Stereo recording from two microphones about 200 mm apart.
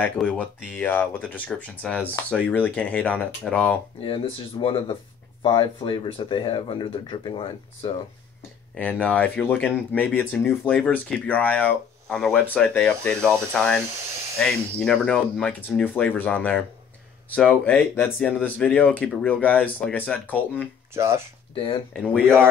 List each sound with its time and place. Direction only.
0.0 s speech: 5° left (ahead or behind)
0.7 s speech: 10° left (ahead or behind)
4.0 s speech: 25° left (ahead or behind)
8.7 s speech: 5° left (ahead or behind)
20.9 s speech: 15° right (ahead or behind)
21.5 s speech: 25° left (ahead or behind)
21.9 s speech: 5° left (ahead or behind)